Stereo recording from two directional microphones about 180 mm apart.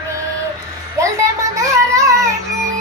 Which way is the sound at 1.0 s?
15° right (ahead or behind).